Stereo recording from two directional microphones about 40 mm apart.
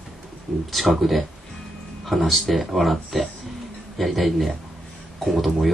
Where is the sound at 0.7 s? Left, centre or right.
Centre.